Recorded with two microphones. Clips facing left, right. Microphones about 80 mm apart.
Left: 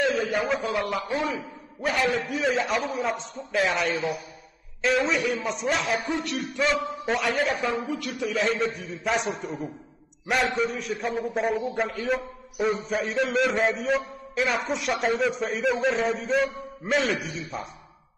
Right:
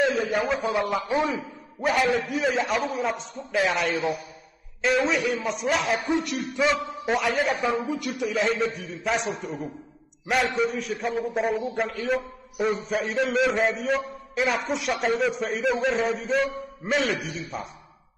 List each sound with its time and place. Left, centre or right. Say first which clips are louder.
0.0 s a sound: right 1 dB; centre
0.7 s a man's voice: right 2 dB; centre
2.3 s a man's voice: even; centre
3.9 s a man's voice: right 2 dB; centre
4.8 s a man's voice: right 1 dB; centre
5.9 s a man's voice: right 2 dB; right
6.5 s a man's voice: right 1 dB; centre
7.6 s a man's voice: right 2 dB; centre
8.3 s a man's voice: even; centre